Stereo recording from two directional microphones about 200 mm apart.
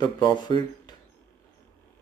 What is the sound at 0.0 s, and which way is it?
Speech, 20° left (ahead or behind).